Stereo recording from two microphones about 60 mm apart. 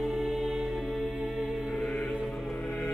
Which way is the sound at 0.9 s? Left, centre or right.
Centre.